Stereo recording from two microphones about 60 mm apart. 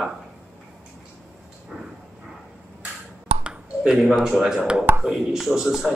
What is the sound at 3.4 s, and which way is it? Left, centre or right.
Finger snapping, centre.